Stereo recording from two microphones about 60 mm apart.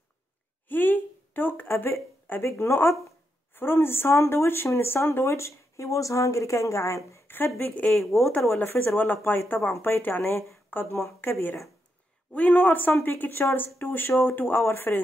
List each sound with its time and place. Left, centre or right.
0.7 s a sound: left
2.4 s speech: left
7.2 s speech: left
7.9 s speech: centre
8.5 s speech: left